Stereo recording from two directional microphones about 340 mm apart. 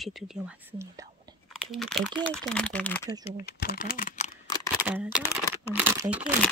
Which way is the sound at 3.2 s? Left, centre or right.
Left.